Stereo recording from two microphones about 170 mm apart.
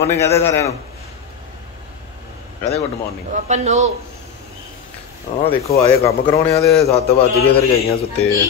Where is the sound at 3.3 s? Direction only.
45° right (ahead or behind).